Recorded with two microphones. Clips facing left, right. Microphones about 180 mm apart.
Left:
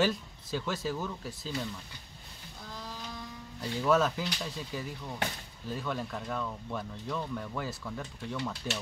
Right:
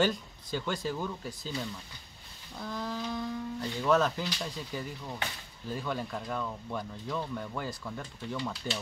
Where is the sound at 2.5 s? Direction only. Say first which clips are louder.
Right 8 dB; 60° right (ahead or behind).